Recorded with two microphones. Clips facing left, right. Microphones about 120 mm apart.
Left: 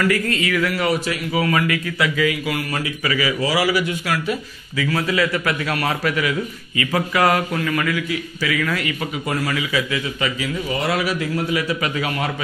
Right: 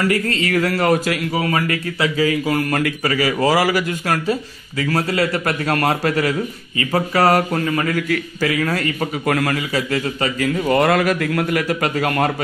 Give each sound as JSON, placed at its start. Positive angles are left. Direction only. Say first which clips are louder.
{"t": 0.0, "sound": "speech", "louder": "right 1 dB", "side_deg": -30}
{"t": 1.3, "sound": "speech", "louder": "left 4 dB", "side_deg": -30}
{"t": 7.9, "sound": "speech", "louder": "right 3 dB", "side_deg": -45}
{"t": 9.2, "sound": "a man's voice", "louder": "right 5 dB", "side_deg": -60}
{"t": 9.6, "sound": "speech", "louder": "right 2 dB", "side_deg": -45}